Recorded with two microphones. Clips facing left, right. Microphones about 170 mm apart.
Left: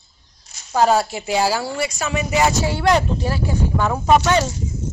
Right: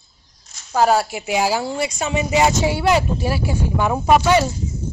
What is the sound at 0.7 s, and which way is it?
Speech, 10° right (ahead or behind).